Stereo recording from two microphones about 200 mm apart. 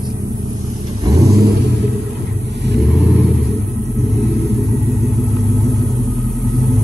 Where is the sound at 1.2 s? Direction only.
55° right (ahead or behind).